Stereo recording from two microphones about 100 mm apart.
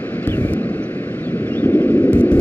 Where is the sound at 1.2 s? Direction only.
20° left (ahead or behind).